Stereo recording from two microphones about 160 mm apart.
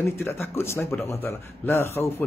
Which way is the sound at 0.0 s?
15° left (ahead or behind).